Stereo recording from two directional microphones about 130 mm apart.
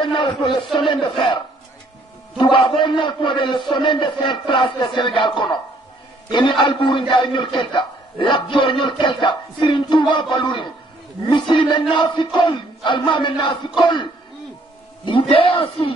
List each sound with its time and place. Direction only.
0.0 s a man's voice: 40° left (ahead or behind)
15.0 s speech: 45° left (ahead or behind)